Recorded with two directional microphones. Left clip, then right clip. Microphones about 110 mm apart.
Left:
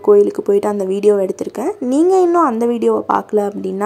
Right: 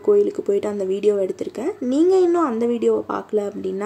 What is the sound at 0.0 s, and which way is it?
A woman's voice, 30° left (ahead or behind).